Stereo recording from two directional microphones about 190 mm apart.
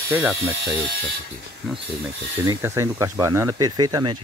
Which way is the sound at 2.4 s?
15° right (ahead or behind).